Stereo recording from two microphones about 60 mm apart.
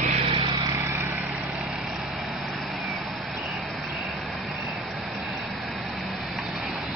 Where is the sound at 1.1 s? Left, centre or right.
Right.